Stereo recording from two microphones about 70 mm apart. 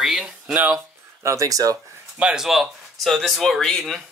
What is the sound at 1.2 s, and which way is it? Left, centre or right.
Speech, right.